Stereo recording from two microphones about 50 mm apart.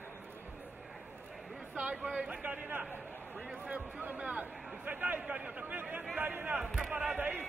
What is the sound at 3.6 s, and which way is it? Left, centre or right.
Speech, right.